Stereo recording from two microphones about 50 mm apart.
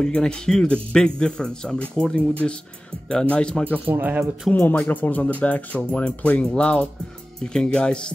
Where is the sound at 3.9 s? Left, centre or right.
Right.